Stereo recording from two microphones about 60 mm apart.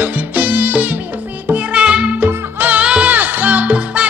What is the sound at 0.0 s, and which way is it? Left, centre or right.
Music, right.